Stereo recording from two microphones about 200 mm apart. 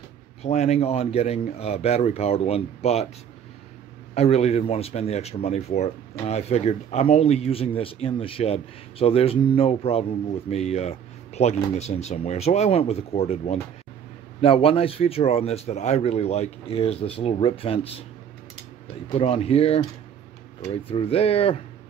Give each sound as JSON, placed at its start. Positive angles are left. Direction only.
{"t": 0.4, "sound": "speech", "side_deg": 35}
{"t": 4.1, "sound": "speech", "side_deg": 30}
{"t": 19.1, "sound": "speech", "side_deg": 30}